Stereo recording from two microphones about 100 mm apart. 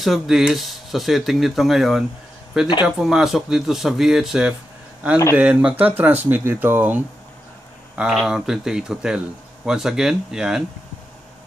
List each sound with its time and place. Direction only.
0.0 s speech: centre (ahead or behind); by 7.0 s 20° right (ahead or behind)
7.9 s speech: 5° right (ahead or behind)